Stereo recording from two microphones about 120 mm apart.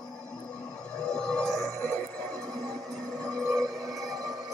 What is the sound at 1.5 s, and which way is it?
Music, 25° left (ahead or behind).